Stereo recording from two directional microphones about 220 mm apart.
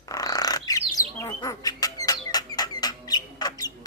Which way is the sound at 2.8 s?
20° left (ahead or behind).